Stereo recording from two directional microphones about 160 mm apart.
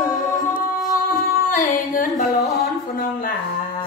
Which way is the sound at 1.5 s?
55° left (ahead or behind).